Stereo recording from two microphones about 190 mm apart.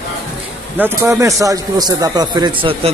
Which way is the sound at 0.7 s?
15° right (ahead or behind).